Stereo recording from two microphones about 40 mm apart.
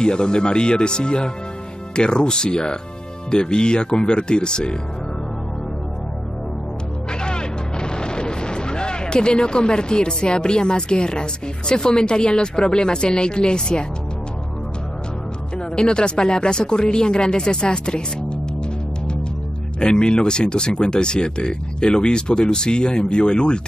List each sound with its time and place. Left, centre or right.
0.0 s speech: left
7.1 s speech: left
15.5 s speech: left
19.8 s speech: left